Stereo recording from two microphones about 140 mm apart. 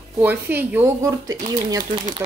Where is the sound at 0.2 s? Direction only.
15° right (ahead or behind).